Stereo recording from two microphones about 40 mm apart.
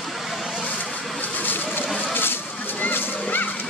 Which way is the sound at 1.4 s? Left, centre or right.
Left.